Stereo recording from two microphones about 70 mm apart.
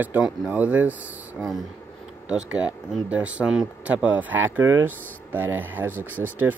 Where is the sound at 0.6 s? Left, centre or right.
Right.